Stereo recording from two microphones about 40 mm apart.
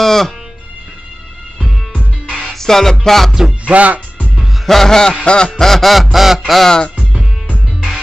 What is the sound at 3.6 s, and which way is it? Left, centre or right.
Speech, right.